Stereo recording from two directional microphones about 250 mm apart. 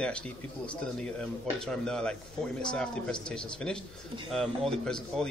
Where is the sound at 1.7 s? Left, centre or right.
Centre.